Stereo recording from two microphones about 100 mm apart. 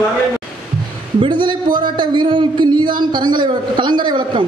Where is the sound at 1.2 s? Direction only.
50° right (ahead or behind).